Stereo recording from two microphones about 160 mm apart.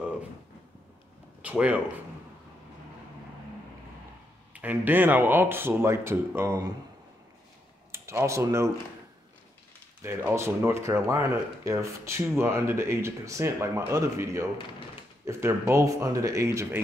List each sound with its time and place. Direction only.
1.4 s speech: 10° right (ahead or behind)
4.6 s speech: 10° right (ahead or behind)
7.9 s speech: 15° right (ahead or behind)
10.0 s speech: 15° right (ahead or behind)